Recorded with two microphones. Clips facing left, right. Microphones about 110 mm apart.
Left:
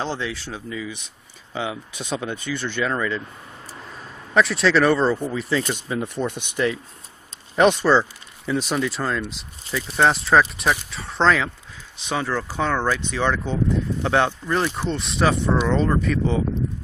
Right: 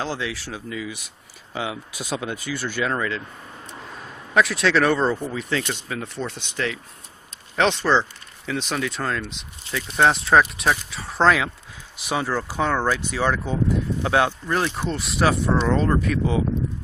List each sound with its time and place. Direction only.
0.0 s speech: 5° right (ahead or behind)
4.3 s speech: centre (ahead or behind)
5.9 s speech: 15° left (ahead or behind)
7.5 s speech: 10° left (ahead or behind)